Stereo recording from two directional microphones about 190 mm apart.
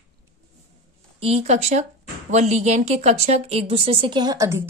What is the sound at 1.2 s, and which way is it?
Speech, 35° right (ahead or behind).